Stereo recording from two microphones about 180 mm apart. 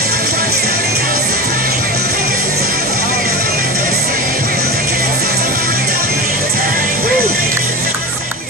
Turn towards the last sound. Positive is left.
turn(degrees=-55)  # may be behind; listen again after turning